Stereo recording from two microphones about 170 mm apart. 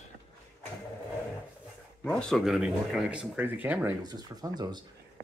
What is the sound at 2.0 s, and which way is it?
Speech, 5° left (ahead or behind).